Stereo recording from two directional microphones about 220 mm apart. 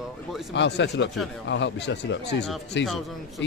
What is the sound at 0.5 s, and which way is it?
Speech, 50° left (ahead or behind).